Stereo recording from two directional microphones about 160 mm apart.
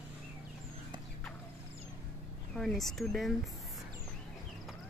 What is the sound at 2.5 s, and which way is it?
Speech, centre (ahead or behind).